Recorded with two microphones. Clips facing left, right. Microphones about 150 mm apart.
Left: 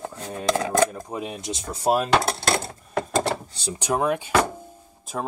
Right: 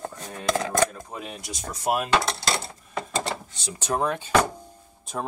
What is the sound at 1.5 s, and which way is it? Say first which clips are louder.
Speech: left 4 dB; 30° left (ahead or behind).